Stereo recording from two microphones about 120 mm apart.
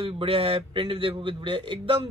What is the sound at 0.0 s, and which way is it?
A man's voice, 50° right (ahead or behind).